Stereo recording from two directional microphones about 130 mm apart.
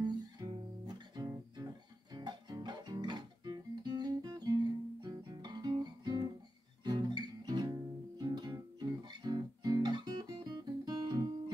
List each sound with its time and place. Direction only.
0.0 s music: 30° right (ahead or behind)
6.8 s guitar: 35° right (ahead or behind)